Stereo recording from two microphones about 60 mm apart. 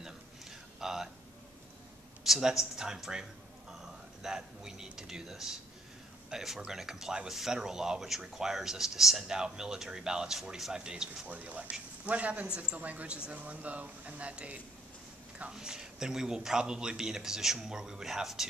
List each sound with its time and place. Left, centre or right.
0.0 s a sound: centre
2.2 s speech: centre
11.2 s speech: right; by 18.5 s centre